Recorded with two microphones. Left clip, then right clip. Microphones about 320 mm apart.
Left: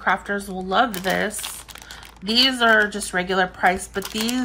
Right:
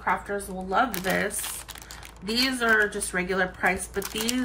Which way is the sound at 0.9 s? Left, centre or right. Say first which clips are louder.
Left 4 dB; centre.